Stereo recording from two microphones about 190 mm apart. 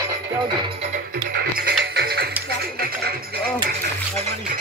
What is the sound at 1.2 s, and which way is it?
Music, 55° right (ahead or behind).